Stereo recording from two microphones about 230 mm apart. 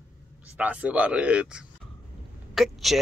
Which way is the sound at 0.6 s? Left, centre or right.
Centre.